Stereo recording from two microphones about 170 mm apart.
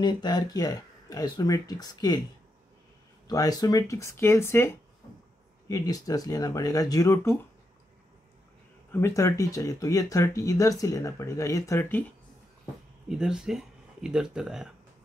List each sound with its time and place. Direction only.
0.0 s speech: 25° left (ahead or behind)
3.3 s speech: 20° left (ahead or behind)
8.9 s speech: 15° left (ahead or behind)
13.1 s speech: 5° right (ahead or behind)